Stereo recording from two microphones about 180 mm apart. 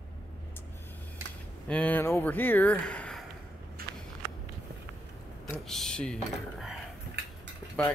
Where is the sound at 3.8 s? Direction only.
55° right (ahead or behind).